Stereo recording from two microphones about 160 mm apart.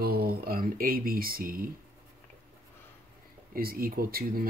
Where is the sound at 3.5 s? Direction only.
65° right (ahead or behind).